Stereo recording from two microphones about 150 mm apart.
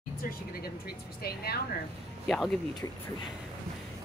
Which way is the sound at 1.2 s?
90° left.